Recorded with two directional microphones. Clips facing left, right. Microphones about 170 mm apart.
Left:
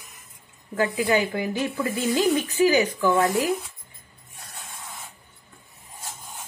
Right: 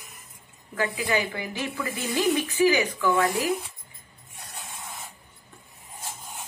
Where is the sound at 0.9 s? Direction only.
40° left (ahead or behind).